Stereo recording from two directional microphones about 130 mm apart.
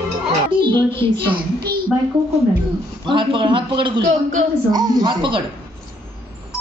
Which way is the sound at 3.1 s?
40° right (ahead or behind).